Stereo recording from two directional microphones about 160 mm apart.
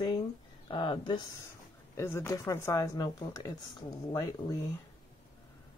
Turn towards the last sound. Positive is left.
turn(degrees=25)  # may be behind; listen again after turning